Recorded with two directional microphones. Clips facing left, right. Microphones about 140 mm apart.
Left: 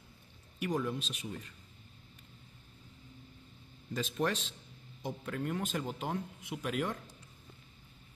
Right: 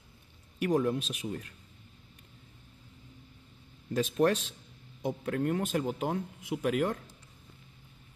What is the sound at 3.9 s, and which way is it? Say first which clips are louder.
Speech: right 7 dB; 50° right (ahead or behind).